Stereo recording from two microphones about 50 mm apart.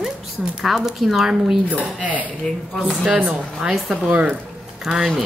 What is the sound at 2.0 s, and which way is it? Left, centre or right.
Speech, right.